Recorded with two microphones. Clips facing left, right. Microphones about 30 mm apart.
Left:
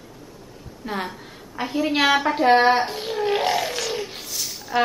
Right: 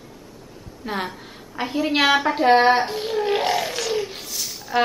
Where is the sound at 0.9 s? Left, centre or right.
Centre.